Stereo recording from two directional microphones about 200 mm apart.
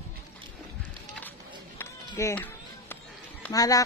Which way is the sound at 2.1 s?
15° left (ahead or behind).